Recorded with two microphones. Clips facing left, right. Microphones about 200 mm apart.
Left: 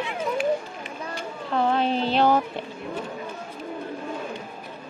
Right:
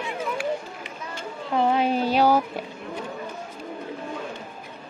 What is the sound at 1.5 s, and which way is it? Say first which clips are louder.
Speech: right 1 dB; 10° right (ahead or behind).